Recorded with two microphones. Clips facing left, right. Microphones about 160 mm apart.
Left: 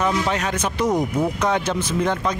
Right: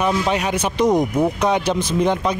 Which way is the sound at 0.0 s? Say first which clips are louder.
Right 2 dB; 15° right (ahead or behind).